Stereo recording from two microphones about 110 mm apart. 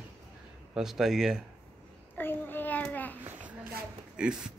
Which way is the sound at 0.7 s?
5° right (ahead or behind).